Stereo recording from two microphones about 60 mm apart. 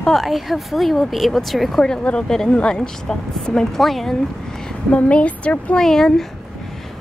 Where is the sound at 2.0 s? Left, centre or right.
Centre.